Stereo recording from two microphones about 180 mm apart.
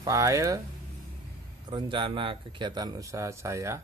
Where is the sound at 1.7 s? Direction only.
25° right (ahead or behind).